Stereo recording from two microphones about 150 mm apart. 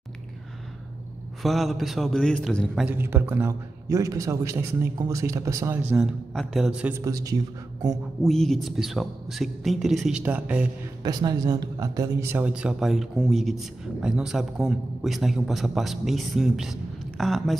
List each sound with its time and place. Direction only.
1.4 s speech: centre (ahead or behind)
2.9 s a man's voice: 15° right (ahead or behind)
5.9 s a man's voice: centre (ahead or behind); by 8.0 s 25° right (ahead or behind)
8.2 s speech: centre (ahead or behind)
11.0 s speech: 25° right (ahead or behind); by 17.6 s centre (ahead or behind)